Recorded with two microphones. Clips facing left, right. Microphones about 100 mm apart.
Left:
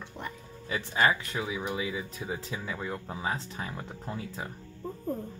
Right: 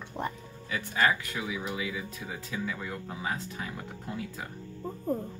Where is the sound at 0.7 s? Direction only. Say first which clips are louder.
Left 1 dB; 25° left (ahead or behind).